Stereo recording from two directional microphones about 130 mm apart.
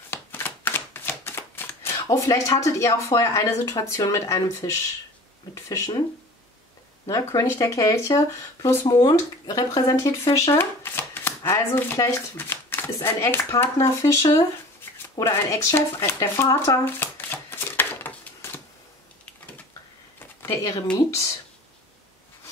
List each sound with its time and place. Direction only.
0.1 s shuffling cards: 15° left (ahead or behind)
3.6 s speech: 25° left (ahead or behind)
7.1 s speech: 25° left (ahead or behind)
15.1 s shuffling cards: 20° left (ahead or behind)
20.4 s speech: 30° left (ahead or behind)